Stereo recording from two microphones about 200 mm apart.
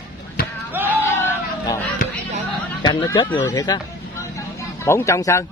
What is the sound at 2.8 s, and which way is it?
Speech, 25° left (ahead or behind).